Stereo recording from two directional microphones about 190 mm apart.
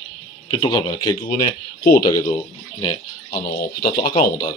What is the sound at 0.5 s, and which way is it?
Speech, 25° left (ahead or behind).